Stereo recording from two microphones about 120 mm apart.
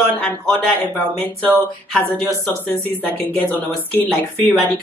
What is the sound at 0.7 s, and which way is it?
A woman's voice, 15° left (ahead or behind).